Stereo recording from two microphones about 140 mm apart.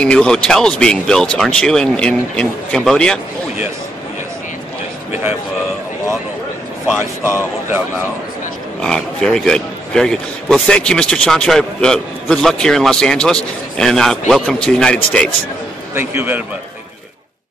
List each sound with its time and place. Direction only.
0.0 s a man's voice: 5° left (ahead or behind)
6.9 s speech: 15° right (ahead or behind)
8.8 s a man's voice: 5° left (ahead or behind)
15.9 s speech: 15° right (ahead or behind)